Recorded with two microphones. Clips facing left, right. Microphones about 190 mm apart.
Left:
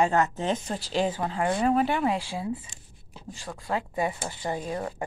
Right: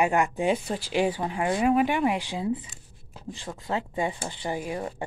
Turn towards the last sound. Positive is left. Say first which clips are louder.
# even
turn(degrees=-20)  # may be behind; listen again after turning